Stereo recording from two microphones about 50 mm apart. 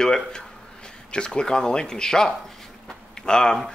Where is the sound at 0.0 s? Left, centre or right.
Centre.